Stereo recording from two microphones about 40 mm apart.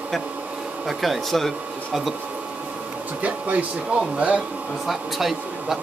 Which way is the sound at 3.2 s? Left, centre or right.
Right.